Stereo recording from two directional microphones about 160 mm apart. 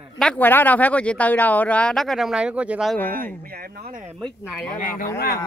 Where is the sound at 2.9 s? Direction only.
10° left (ahead or behind).